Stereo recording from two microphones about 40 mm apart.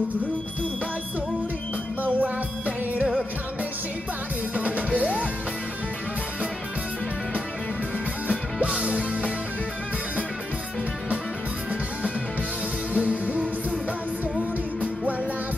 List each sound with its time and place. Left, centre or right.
2.1 s music: right
4.6 s music: right
8.3 s music: right
12.9 s music: right